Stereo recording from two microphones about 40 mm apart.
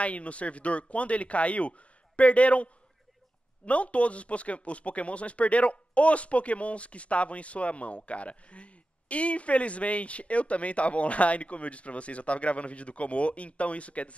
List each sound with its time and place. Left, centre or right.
0.0 s speech: left